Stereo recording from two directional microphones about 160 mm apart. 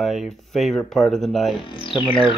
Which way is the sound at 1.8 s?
30° left (ahead or behind).